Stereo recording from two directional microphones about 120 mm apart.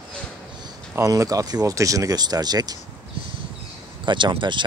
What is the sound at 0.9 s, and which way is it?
Speech, 25° right (ahead or behind).